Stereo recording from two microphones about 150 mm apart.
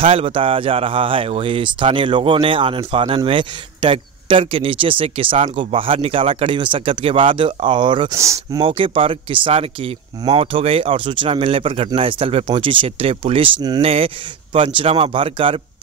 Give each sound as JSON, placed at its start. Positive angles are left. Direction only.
{"t": 0.0, "sound": "speech", "side_deg": -40}
{"t": 8.1, "sound": "speech", "side_deg": -20}
{"t": 8.6, "sound": "speech", "side_deg": -35}